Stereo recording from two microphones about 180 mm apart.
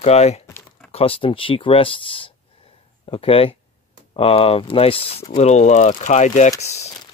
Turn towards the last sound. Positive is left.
turn(degrees=35)  # may be behind; listen again after turning